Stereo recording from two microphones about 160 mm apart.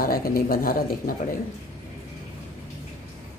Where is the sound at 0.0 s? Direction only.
65° left (ahead or behind).